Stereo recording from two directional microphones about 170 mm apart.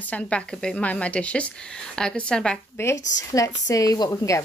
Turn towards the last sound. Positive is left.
turn(degrees=20)  # may be behind; listen again after turning